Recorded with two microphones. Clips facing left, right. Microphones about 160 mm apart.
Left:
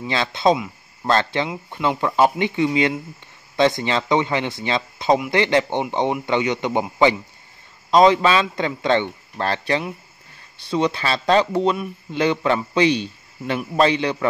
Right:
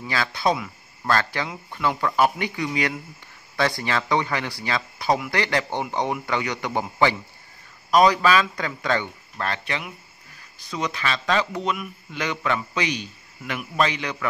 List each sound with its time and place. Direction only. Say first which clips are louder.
0.0 s speech: left 5 dB; 25° left (ahead or behind)